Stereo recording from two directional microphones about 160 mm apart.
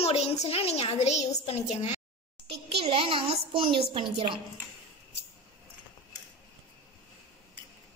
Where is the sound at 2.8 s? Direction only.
35° right (ahead or behind).